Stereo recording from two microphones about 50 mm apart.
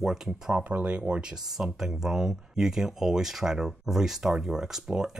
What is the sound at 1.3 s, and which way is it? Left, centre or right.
Speech, centre.